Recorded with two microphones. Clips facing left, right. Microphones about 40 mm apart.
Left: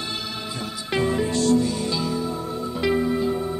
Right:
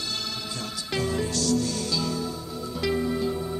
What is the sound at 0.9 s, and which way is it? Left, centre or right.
Music, left.